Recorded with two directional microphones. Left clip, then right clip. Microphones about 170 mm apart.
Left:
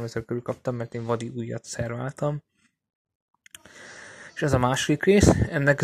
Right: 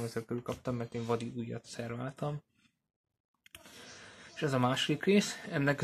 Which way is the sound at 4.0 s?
40° left (ahead or behind).